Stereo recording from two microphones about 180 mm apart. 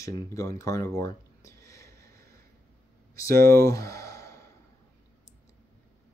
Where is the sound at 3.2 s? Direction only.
15° left (ahead or behind).